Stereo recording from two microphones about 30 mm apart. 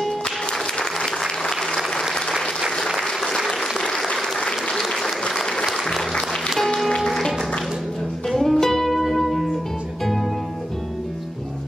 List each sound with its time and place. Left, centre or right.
0.9 s applause: centre
3.0 s applause: centre
3.6 s applause: centre
4.1 s applause: left
4.7 s applause: centre
6.6 s music: centre
8.3 s music: centre